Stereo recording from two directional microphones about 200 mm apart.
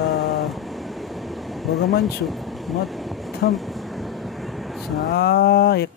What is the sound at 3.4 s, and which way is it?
Speech, 55° left (ahead or behind).